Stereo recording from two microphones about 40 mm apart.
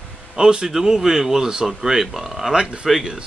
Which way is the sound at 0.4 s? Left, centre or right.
Centre.